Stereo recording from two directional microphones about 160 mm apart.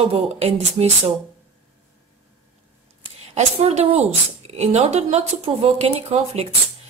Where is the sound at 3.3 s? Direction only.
45° right (ahead or behind).